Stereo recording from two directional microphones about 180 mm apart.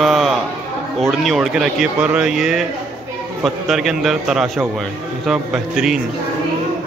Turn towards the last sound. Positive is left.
turn(degrees=-5)  # may be behind; listen again after turning